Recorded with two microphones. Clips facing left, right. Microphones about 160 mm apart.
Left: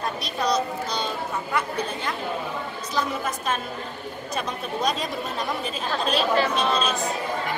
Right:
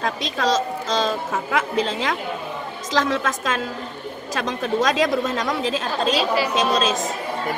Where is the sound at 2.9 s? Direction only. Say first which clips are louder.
Right 6 dB; 90° right.